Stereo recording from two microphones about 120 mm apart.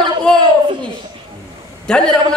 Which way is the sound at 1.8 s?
5° left (ahead or behind).